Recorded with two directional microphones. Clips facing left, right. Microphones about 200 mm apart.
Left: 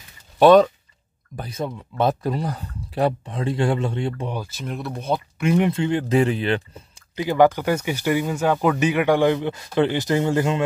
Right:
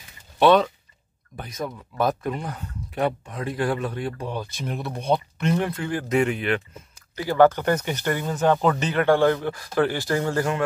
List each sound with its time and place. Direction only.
0.4 s speech: 45° left (ahead or behind); by 4.3 s 25° left (ahead or behind)
4.3 s speech: 5° left (ahead or behind)
5.7 s speech: 25° left (ahead or behind)
7.2 s speech: 15° left (ahead or behind)